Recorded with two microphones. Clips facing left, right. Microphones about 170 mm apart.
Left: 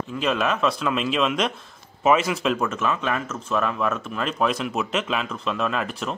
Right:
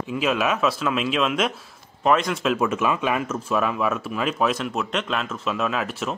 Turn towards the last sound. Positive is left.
turn(degrees=0)  # may be behind; listen again after turning